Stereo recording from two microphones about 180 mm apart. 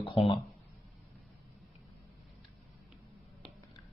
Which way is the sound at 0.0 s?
30° left (ahead or behind).